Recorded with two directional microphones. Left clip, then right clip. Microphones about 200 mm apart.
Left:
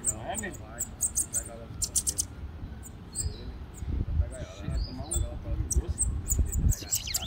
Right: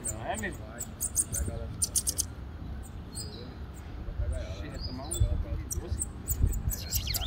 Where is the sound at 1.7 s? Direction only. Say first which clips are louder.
Left 1 dB; 20° left (ahead or behind).